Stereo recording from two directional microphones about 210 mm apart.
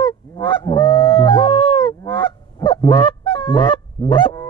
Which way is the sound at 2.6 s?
20° left (ahead or behind).